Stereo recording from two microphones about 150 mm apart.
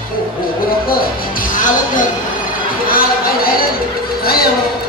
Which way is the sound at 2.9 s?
75° left (ahead or behind).